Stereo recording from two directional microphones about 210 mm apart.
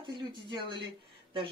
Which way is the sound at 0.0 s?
20° right (ahead or behind).